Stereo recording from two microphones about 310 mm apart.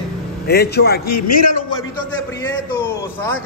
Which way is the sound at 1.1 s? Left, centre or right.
Left.